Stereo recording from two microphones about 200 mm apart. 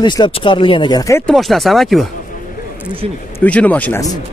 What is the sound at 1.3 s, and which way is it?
Speech, centre (ahead or behind).